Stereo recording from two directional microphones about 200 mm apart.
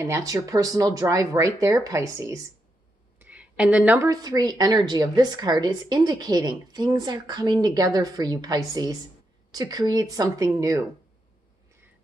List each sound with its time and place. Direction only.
0.0 s a woman's voice: 15° right (ahead or behind)